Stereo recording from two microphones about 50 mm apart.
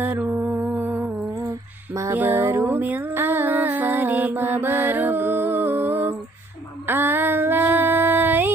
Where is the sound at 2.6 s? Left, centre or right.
Right.